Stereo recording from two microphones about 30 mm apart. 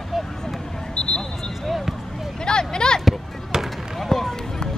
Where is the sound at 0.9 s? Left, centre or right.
Left.